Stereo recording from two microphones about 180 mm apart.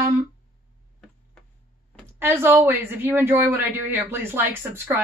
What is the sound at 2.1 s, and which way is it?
Speech, 15° right (ahead or behind).